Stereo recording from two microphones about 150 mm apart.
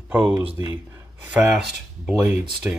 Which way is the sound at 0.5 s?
35° left (ahead or behind).